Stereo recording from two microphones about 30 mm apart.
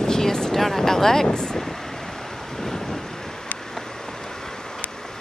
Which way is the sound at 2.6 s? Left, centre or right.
Centre.